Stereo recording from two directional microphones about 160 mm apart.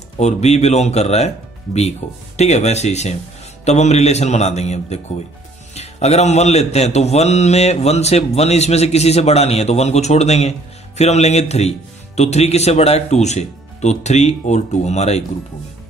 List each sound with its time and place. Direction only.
0.2 s speech: 45° left (ahead or behind)